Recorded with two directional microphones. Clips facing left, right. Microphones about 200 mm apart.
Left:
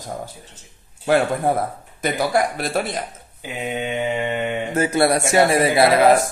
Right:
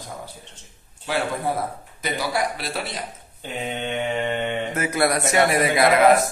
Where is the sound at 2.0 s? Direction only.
50° left (ahead or behind).